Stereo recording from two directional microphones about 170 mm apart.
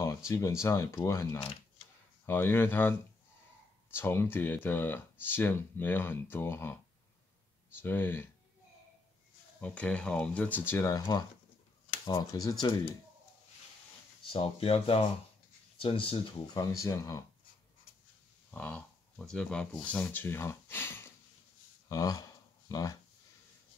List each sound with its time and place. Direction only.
0.3 s speech: 15° left (ahead or behind)
9.6 s speech: 5° left (ahead or behind)
10.7 s speech: 15° left (ahead or behind)
14.2 s speech: 30° left (ahead or behind)
18.5 s speech: 10° left (ahead or behind)
21.8 s a sound: 20° left (ahead or behind)